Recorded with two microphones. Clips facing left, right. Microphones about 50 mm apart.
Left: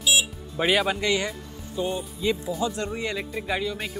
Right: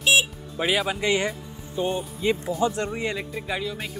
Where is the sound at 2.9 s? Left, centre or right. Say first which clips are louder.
Right 1 dB; centre.